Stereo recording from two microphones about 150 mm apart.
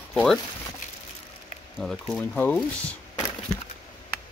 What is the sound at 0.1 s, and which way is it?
Speech, centre (ahead or behind).